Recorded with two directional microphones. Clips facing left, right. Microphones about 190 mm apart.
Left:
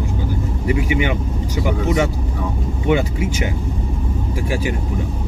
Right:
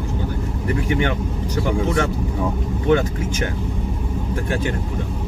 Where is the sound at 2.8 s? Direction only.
10° left (ahead or behind).